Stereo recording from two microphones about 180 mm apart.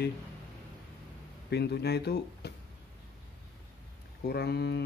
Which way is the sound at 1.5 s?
65° left (ahead or behind).